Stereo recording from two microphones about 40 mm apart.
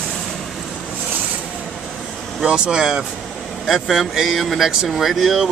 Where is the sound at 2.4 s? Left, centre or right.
Right.